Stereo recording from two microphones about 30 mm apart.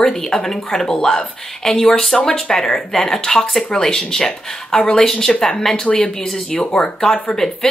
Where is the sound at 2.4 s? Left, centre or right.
Left.